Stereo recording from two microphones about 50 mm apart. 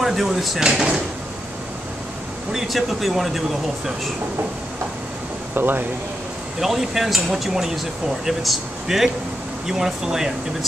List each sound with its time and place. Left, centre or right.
0.0 s speech: centre
0.6 s speech: centre
2.5 s speech: centre
5.5 s speech: right
6.6 s speech: centre